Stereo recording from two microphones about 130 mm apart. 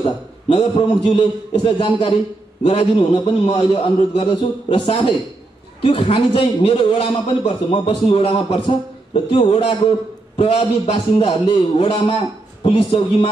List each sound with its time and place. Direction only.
0.0 s a man's voice: 45° left (ahead or behind)